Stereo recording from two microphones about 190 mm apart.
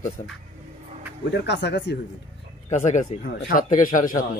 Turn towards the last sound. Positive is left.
turn(degrees=45)  # may be behind; listen again after turning